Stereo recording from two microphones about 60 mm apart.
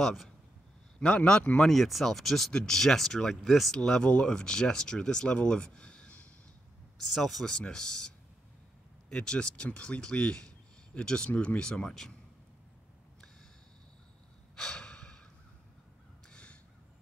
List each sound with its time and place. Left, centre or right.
0.0 s speech: centre
0.9 s speech: centre
1.7 s speech: centre
3.7 s speech: centre
7.0 s speech: centre
9.1 s speech: centre
14.5 s breathing: centre
16.3 s crow: centre